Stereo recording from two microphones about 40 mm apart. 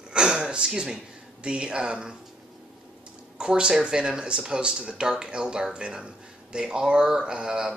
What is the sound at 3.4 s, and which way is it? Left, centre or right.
Speech, centre.